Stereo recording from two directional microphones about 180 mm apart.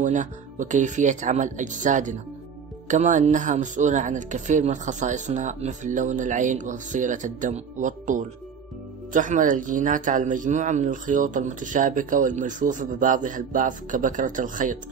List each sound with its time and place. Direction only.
0.0 s speech: 45° right (ahead or behind)